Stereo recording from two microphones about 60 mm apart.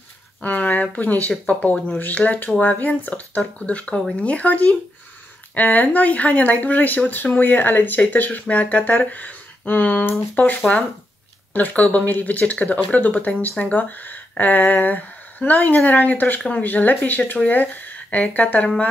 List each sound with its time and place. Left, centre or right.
0.4 s speech: left